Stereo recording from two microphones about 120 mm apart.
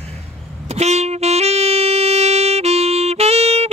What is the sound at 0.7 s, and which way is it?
Saxophone, 65° right (ahead or behind).